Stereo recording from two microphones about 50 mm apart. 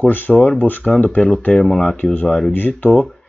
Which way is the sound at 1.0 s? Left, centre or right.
Left.